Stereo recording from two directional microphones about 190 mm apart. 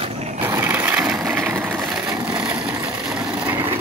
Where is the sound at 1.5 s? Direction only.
15° right (ahead or behind).